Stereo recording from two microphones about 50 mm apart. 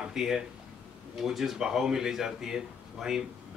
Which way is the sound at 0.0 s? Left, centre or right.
Centre.